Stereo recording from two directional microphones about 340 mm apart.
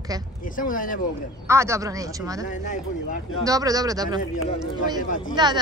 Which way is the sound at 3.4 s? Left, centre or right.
Centre.